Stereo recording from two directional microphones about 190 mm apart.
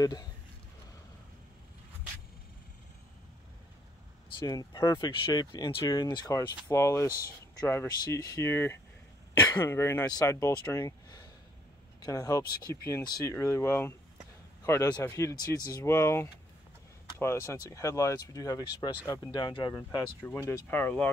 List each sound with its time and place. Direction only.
0.0 s speech: 20° left (ahead or behind)
4.4 s speech: 20° left (ahead or behind)